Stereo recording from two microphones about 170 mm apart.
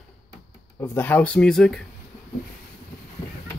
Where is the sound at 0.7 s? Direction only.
15° left (ahead or behind).